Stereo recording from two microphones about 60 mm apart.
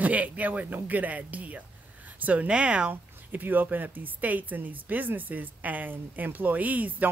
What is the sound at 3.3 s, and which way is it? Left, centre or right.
Speech, right.